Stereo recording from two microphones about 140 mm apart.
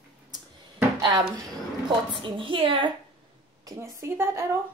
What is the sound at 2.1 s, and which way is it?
Speech, 35° right (ahead or behind).